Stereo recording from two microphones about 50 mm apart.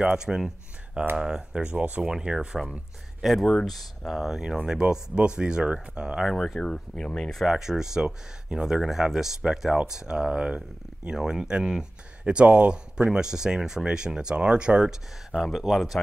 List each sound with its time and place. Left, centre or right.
0.0 s speech: centre
2.0 s speech: centre
3.2 s speech: centre
6.3 s speech: centre
6.6 s speech: centre
7.4 s speech: centre
12.4 s speech: right
13.1 s speech: centre
15.3 s speech: centre